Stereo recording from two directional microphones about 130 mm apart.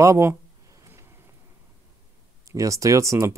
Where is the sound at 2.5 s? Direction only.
25° right (ahead or behind).